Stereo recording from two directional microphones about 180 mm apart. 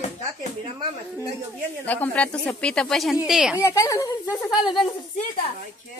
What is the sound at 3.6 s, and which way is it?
Speech, 15° left (ahead or behind).